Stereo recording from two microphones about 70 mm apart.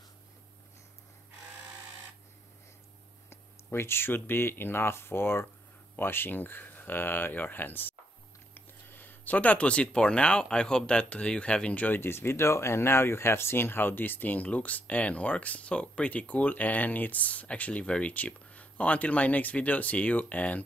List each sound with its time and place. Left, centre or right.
3.3 s speech: left
12.0 s speech: left